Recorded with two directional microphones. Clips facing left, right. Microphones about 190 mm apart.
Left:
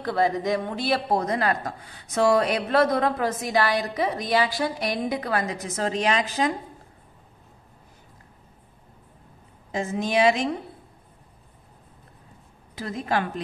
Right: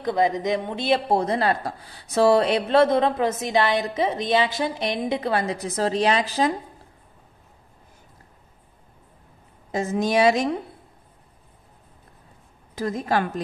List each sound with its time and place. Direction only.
0.0 s a woman's voice: 20° right (ahead or behind); by 6.5 s 35° right (ahead or behind)
9.7 s a woman's voice: 40° right (ahead or behind)
12.7 s a woman's voice: 40° right (ahead or behind)